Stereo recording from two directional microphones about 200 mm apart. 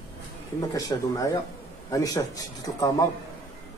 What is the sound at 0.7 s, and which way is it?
A man's voice, 15° left (ahead or behind).